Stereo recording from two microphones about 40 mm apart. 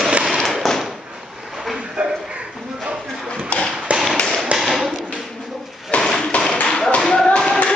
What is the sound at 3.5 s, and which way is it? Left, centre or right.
Tap, left.